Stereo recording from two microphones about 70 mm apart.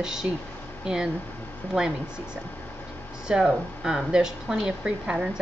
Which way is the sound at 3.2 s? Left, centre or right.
Centre.